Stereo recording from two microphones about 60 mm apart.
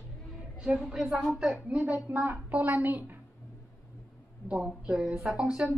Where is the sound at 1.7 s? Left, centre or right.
Right.